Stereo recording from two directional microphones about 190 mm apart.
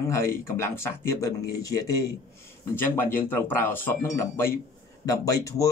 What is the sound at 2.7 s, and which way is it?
A man's voice, 10° left (ahead or behind).